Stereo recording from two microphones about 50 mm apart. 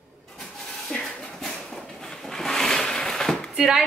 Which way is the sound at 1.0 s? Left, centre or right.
Centre.